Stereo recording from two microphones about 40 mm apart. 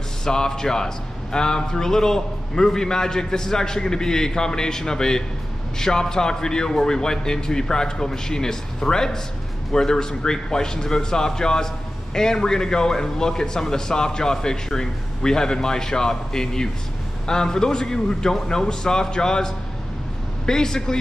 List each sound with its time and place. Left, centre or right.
0.2 s a man's voice: centre